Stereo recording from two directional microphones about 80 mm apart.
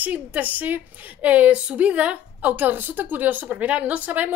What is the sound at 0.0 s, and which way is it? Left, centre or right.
Speech, right.